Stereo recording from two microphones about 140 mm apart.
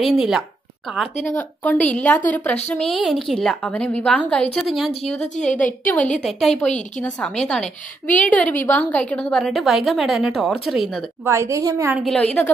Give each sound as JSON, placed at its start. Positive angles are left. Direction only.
{"t": 0.0, "sound": "a woman's voice", "side_deg": -5}
{"t": 1.2, "sound": "a woman's voice", "side_deg": 10}
{"t": 5.9, "sound": "a woman's voice", "side_deg": 10}
{"t": 11.2, "sound": "a woman's voice", "side_deg": -20}
{"t": 11.9, "sound": "a woman's voice", "side_deg": 0}